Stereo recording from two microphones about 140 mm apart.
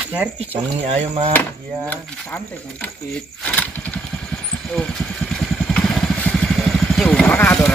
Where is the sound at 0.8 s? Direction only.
40° right (ahead or behind).